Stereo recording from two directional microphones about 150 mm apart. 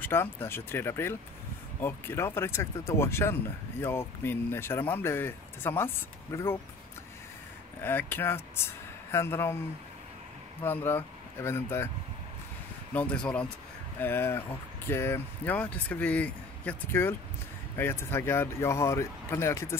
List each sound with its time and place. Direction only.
0.0 s speech: 15° left (ahead or behind)
7.8 s speech: 15° left (ahead or behind)
10.6 s speech: 15° left (ahead or behind)
12.9 s speech: 10° left (ahead or behind)